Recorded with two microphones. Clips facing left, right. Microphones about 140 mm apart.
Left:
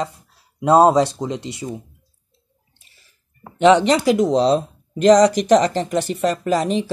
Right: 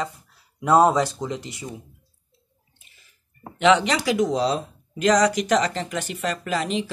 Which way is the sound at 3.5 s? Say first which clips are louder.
Left 5 dB; 40° left (ahead or behind).